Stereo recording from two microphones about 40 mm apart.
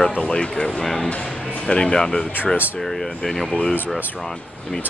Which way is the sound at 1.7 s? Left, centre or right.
Left.